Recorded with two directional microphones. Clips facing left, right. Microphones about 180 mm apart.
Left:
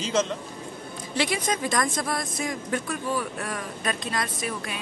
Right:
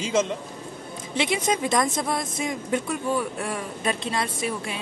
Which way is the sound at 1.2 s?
25° right (ahead or behind).